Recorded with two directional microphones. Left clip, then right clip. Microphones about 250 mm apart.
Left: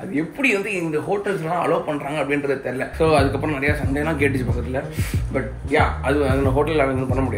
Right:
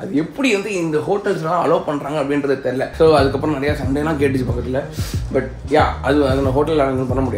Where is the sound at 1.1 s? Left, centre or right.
Centre.